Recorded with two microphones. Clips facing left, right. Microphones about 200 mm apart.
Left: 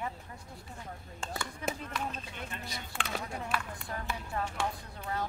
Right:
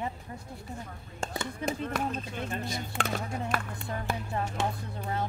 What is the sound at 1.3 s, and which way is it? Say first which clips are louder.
Speech: right 3 dB; 20° right (ahead or behind).